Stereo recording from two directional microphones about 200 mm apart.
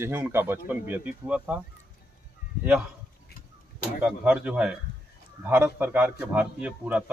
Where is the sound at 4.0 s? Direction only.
5° right (ahead or behind).